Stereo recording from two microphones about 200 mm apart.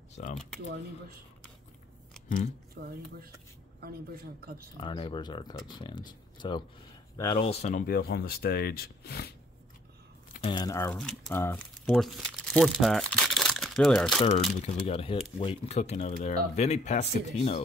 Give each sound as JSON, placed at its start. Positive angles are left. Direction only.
{"t": 0.2, "sound": "speech", "side_deg": 35}
{"t": 2.2, "sound": "speech", "side_deg": 40}
{"t": 2.8, "sound": "speech", "side_deg": -50}
{"t": 4.7, "sound": "speech", "side_deg": 25}
{"t": 7.8, "sound": "speech", "side_deg": 50}
{"t": 10.4, "sound": "speech", "side_deg": 20}
{"t": 14.6, "sound": "speech", "side_deg": 30}